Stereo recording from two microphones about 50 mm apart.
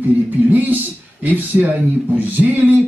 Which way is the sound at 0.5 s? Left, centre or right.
Right.